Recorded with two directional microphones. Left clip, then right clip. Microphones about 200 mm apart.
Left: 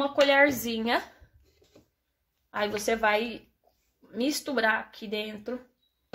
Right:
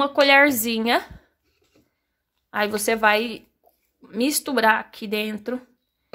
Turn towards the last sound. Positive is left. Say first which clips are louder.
# right 7 dB
turn(degrees=-45)  # may be behind; listen again after turning